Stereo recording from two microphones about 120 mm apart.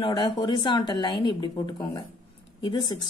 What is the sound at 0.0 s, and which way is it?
A woman's voice, 40° left (ahead or behind).